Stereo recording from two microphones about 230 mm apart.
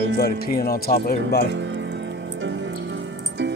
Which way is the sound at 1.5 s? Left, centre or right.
Right.